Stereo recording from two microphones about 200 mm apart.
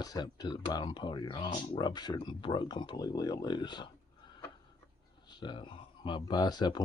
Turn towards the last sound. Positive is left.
turn(degrees=20)  # may be behind; listen again after turning